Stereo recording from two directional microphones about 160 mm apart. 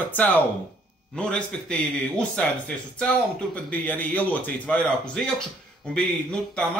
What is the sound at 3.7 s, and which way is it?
Speech, 10° left (ahead or behind).